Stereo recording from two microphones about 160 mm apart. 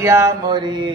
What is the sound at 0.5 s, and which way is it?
Speech, 30° right (ahead or behind).